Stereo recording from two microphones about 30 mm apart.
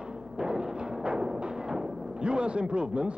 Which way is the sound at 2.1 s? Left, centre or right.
Right.